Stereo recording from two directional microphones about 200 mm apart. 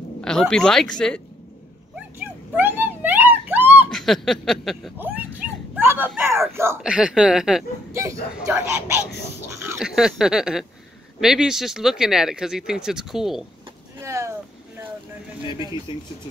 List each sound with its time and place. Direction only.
0.2 s speech: 5° left (ahead or behind)
2.1 s a sound: 10° right (ahead or behind)
3.9 s speech: centre (ahead or behind)
7.9 s speech: 15° right (ahead or behind)
9.8 s speech: centre (ahead or behind)
14.0 s a sound: 15° right (ahead or behind)
15.9 s speech: 25° left (ahead or behind)